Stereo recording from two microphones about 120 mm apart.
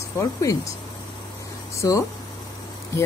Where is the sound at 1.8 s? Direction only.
25° left (ahead or behind).